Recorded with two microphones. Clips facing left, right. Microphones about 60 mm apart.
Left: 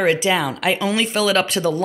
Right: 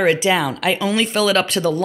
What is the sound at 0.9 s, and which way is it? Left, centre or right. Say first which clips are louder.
Speech: right 3 dB; centre.